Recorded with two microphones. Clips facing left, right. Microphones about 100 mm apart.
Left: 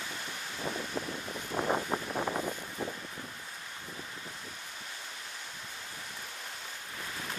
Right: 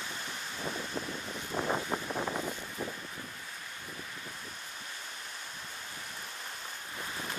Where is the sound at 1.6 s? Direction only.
25° left (ahead or behind).